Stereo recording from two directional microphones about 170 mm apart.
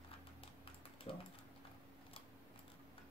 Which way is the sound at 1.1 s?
30° left (ahead or behind).